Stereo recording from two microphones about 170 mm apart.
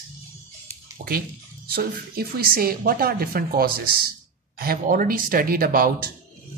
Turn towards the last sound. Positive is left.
turn(degrees=-60)  # may be behind; listen again after turning